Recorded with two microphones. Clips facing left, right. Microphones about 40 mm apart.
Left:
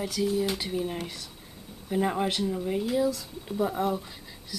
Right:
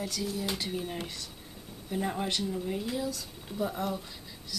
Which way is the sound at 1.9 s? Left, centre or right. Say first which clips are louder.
Left 5 dB; centre.